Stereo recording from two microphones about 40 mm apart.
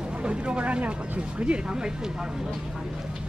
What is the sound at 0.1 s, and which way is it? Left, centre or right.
Speech, right.